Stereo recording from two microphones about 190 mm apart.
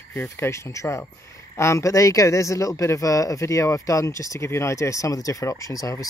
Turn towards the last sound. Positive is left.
turn(degrees=20)  # may be behind; listen again after turning